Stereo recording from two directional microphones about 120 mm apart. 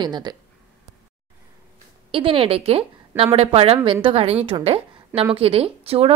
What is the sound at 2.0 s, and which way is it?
A woman's voice, 50° right (ahead or behind).